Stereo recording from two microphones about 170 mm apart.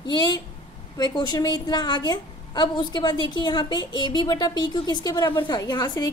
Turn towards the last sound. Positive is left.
turn(degrees=20)  # may be behind; listen again after turning